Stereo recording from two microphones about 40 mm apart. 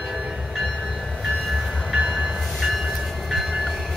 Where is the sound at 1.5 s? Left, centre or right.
Centre.